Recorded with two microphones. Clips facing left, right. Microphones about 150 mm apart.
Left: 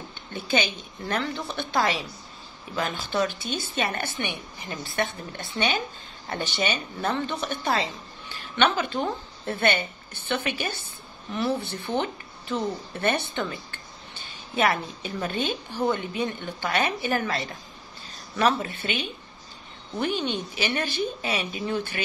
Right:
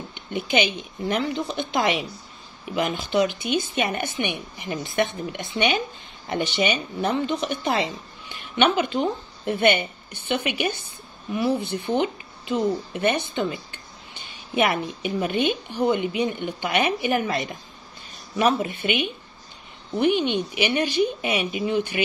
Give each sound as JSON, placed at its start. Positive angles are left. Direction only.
{"t": 0.1, "sound": "speech", "side_deg": -15}